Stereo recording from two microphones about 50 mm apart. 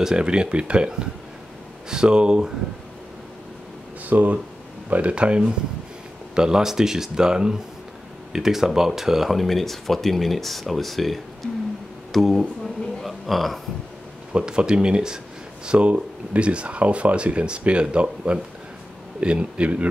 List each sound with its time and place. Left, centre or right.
0.0 s speech: centre
4.0 s speech: right; by 11.5 s centre
12.1 s a sound: centre
14.3 s speech: centre